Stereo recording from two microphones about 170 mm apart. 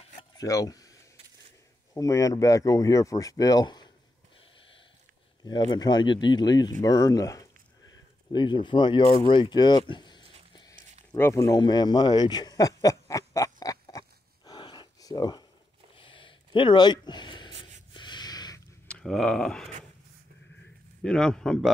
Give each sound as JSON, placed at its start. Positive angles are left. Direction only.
{"t": 0.2, "sound": "a sound", "side_deg": 20}
{"t": 2.0, "sound": "speech", "side_deg": 20}
{"t": 5.4, "sound": "speech", "side_deg": 25}
{"t": 10.5, "sound": "a sound", "side_deg": 25}
{"t": 18.9, "sound": "speech", "side_deg": 5}
{"t": 21.0, "sound": "a man's voice", "side_deg": 5}